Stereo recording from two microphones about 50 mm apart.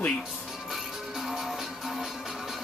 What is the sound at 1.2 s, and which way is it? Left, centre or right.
Music, centre.